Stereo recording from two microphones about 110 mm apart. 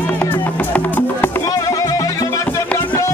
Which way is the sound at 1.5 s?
30° left (ahead or behind).